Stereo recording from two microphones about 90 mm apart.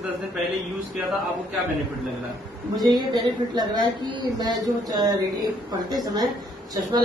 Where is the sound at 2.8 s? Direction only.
55° right (ahead or behind).